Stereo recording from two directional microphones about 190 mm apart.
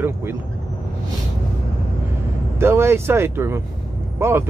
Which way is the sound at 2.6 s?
15° right (ahead or behind).